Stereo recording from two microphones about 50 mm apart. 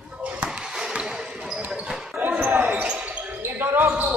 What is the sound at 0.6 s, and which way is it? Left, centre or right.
Basketball bounce, centre.